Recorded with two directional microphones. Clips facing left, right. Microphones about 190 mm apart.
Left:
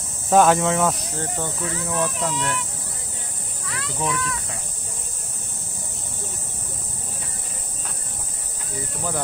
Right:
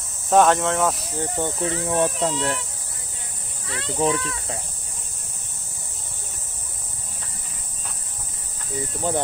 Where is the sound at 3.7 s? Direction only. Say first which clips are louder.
Right 5 dB; 30° right (ahead or behind).